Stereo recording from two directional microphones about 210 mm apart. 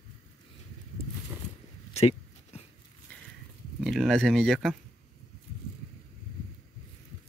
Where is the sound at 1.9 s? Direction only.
30° left (ahead or behind).